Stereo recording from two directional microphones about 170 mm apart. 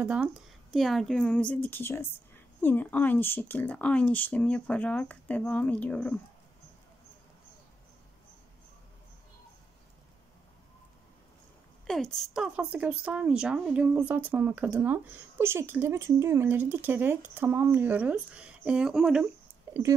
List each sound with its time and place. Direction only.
0.0 s a woman's voice: 5° right (ahead or behind); by 6.1 s 10° left (ahead or behind)
11.8 s a woman's voice: centre (ahead or behind)
19.7 s a sound: 15° right (ahead or behind)